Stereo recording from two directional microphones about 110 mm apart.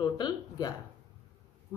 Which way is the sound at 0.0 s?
35° left (ahead or behind).